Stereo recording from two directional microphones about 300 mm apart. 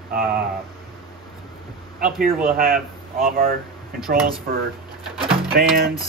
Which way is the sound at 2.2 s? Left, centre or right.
Right.